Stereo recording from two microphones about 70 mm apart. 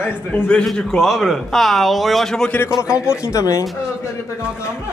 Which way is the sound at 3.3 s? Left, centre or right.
Left.